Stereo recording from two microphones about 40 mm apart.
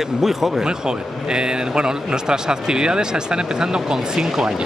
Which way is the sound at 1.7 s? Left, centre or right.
Centre.